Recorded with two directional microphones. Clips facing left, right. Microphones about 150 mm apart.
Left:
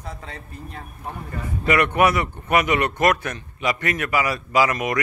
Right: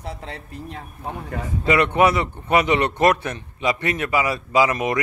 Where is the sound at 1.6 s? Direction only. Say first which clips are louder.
Right 1 dB; 25° right (ahead or behind).